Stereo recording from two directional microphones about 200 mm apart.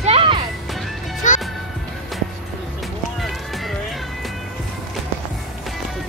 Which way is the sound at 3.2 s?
Centre (ahead or behind).